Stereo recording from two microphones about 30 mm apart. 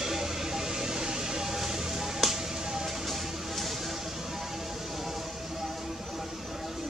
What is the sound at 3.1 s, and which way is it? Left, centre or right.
Music, centre.